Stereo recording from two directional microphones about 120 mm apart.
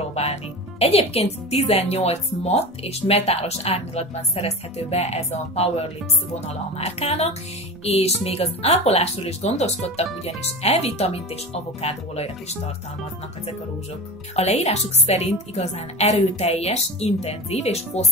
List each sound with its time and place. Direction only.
0.1 s speech: 60° left (ahead or behind)
14.3 s speech: 60° left (ahead or behind)